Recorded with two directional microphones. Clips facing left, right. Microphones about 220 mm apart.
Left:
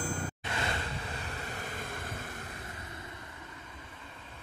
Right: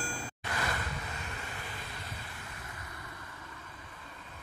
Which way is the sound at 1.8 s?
50° left (ahead or behind).